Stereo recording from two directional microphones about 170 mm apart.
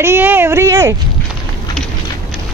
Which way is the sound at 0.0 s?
10° right (ahead or behind).